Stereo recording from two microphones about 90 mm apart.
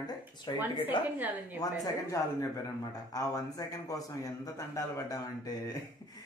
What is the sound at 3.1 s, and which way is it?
A man's voice, 40° left (ahead or behind).